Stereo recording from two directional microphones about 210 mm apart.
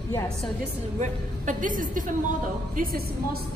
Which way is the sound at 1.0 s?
35° right (ahead or behind).